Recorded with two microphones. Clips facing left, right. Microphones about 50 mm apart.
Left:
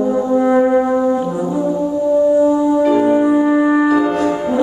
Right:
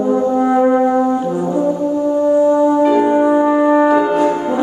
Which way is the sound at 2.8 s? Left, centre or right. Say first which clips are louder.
Right 1 dB; centre.